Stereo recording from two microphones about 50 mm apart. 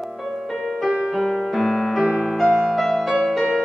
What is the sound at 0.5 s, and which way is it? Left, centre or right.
Music, centre.